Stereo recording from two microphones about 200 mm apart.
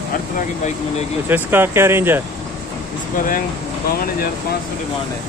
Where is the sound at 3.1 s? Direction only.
45° left (ahead or behind).